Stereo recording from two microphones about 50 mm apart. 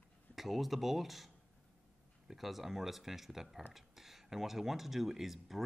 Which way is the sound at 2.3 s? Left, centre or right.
Centre.